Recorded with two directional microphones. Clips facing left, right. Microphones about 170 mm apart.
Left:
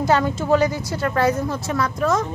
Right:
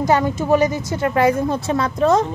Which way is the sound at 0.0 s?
15° right (ahead or behind).